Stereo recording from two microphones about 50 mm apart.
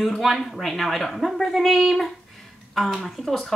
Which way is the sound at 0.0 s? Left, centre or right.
Centre.